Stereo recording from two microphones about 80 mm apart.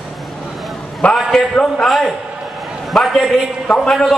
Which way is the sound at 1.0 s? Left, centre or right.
Centre.